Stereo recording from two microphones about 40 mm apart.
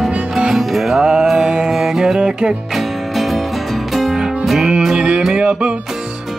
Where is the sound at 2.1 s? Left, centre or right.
Right.